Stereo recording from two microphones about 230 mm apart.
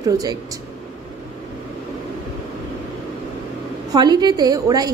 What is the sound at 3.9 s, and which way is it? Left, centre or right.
A woman's voice, centre.